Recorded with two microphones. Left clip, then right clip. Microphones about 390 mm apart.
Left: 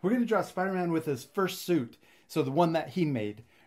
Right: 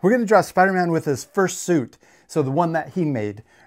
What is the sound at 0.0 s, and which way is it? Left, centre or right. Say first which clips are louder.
Speech: right 12 dB; right.